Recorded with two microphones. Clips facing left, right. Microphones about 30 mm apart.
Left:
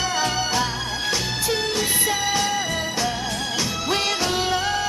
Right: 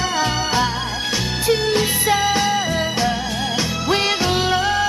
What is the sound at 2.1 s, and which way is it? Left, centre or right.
Music, right.